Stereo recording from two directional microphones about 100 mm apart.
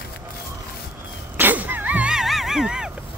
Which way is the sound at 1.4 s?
20° right (ahead or behind).